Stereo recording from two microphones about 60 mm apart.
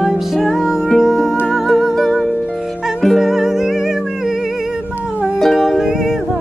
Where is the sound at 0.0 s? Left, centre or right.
Centre.